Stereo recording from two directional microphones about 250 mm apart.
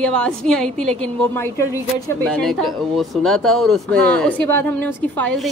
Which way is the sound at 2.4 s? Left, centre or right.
Centre.